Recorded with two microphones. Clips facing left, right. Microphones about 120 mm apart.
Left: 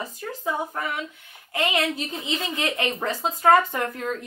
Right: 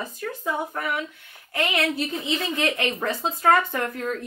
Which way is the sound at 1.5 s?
15° left (ahead or behind).